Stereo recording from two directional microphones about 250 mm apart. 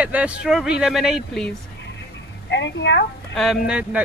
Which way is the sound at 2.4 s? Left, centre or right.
Left.